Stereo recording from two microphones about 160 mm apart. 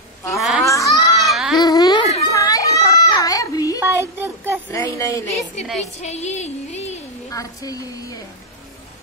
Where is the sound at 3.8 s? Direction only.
15° right (ahead or behind).